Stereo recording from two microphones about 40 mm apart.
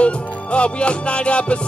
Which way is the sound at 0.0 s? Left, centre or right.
Left.